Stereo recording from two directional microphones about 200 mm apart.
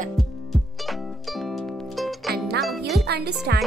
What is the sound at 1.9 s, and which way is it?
Music, centre (ahead or behind).